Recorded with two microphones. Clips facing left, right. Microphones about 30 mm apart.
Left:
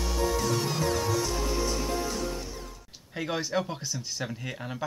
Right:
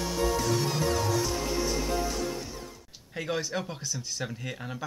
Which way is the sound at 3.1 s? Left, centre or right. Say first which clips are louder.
Left 2 dB; centre.